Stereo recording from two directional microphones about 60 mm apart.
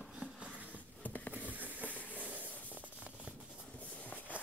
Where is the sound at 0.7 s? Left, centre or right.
Left.